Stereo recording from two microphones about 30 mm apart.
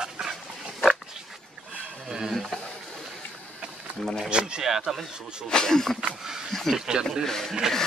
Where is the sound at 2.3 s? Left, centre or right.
Centre.